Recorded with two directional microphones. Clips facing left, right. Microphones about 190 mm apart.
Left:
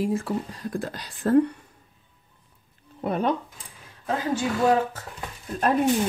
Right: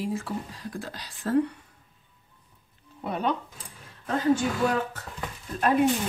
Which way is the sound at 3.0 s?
45° left (ahead or behind).